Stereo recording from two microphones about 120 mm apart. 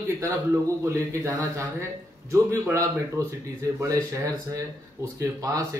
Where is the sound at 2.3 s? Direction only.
25° right (ahead or behind).